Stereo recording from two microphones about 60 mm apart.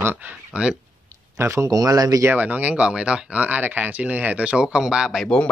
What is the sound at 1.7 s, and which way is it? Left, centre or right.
Speech, right.